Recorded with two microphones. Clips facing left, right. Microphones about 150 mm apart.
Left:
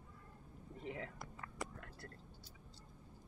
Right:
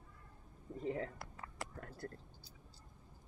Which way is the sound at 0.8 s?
40° right (ahead or behind).